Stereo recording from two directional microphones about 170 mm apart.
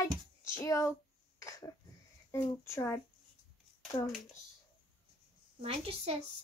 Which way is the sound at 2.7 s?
15° left (ahead or behind).